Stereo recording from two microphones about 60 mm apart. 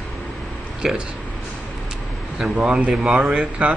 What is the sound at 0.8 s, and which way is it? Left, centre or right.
Speech, centre.